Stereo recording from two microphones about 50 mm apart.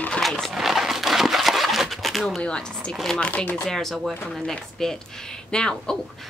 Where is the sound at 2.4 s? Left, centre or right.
Centre.